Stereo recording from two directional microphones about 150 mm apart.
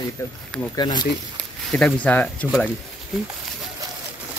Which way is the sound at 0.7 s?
30° left (ahead or behind).